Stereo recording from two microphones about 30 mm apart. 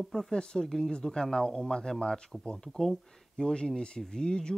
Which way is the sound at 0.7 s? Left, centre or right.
Centre.